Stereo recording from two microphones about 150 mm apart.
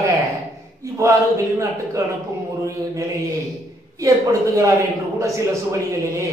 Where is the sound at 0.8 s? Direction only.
20° right (ahead or behind).